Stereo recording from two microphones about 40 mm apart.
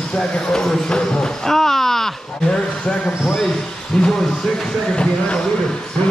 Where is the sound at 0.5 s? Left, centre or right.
Centre.